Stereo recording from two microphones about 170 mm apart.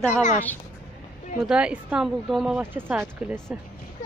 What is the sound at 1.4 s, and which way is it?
Speech, 5° right (ahead or behind).